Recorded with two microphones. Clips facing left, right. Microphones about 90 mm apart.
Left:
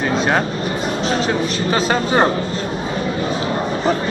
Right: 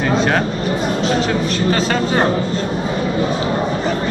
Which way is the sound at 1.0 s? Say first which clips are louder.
Left 1 dB; 20° left (ahead or behind).